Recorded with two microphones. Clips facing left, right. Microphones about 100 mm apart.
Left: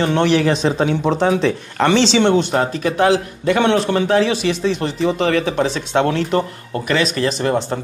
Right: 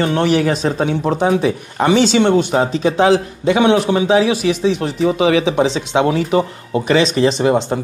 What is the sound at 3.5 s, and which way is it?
A man's voice, 10° right (ahead or behind).